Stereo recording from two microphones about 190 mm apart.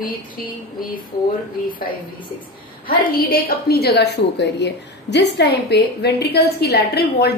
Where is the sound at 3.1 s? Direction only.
55° left (ahead or behind).